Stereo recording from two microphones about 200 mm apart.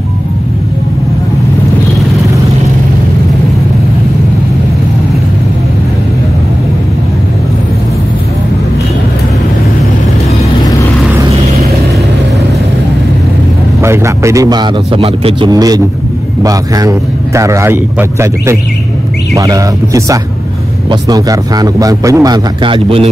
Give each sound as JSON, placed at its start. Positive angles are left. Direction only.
{"t": 13.8, "sound": "a man's voice", "side_deg": -15}